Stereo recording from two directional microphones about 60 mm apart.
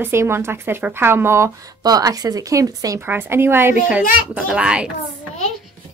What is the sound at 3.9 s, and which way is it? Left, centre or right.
A child's voice, centre.